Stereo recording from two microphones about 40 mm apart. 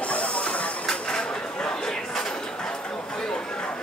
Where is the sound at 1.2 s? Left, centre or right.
Centre.